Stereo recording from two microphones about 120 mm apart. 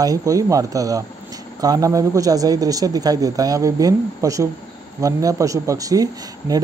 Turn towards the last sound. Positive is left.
turn(degrees=-30)  # may be behind; listen again after turning